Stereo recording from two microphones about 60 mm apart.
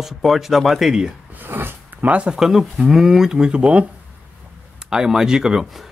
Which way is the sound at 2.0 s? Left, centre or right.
Right.